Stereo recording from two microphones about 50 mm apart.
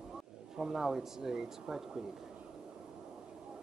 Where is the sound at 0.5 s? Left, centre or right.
Centre.